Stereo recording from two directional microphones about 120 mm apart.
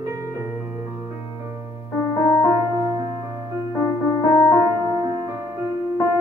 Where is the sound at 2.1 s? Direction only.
20° left (ahead or behind).